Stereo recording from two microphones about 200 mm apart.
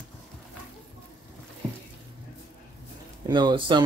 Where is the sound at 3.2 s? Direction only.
20° right (ahead or behind).